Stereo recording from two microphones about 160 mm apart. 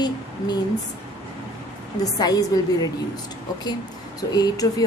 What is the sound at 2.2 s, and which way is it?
Speech, 25° left (ahead or behind).